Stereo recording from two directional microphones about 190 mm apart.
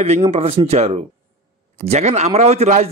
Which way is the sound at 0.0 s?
35° right (ahead or behind).